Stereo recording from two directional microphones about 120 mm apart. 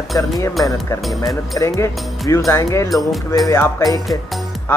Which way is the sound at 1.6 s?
25° left (ahead or behind).